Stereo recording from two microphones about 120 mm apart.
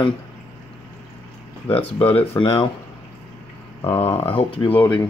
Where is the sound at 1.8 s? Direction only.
50° left (ahead or behind).